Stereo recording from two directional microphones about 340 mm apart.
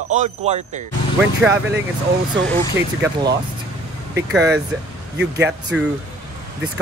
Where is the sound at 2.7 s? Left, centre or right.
Centre.